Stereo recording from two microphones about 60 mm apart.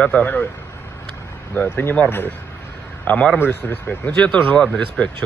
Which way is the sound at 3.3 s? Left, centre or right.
Left.